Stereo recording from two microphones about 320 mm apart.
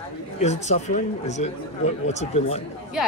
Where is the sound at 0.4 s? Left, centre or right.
Left.